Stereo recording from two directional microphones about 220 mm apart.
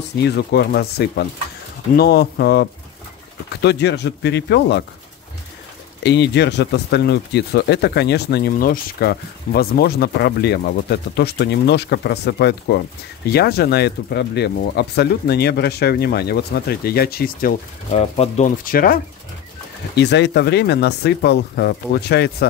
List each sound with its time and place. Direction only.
0.2 s speech: 45° left (ahead or behind)
6.0 s speech: 50° left (ahead or behind)
18.1 s speech: 30° left (ahead or behind)
20.0 s speech: 50° left (ahead or behind)